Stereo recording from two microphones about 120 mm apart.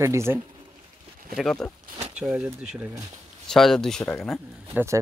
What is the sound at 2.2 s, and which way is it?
Speech, 5° right (ahead or behind).